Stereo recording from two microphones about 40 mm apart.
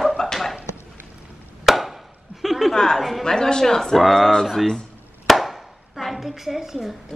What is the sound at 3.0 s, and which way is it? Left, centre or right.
Speech, centre.